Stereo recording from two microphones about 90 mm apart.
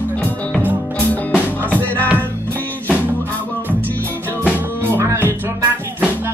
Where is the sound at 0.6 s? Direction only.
20° right (ahead or behind).